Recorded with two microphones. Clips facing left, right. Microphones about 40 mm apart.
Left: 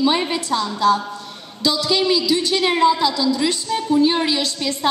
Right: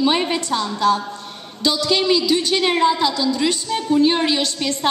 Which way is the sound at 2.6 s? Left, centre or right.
Centre.